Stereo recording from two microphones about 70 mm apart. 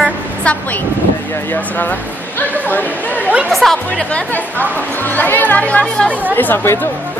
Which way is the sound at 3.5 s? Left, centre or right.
Centre.